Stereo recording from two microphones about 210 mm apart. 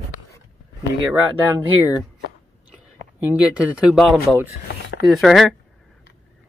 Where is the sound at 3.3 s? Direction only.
5° right (ahead or behind).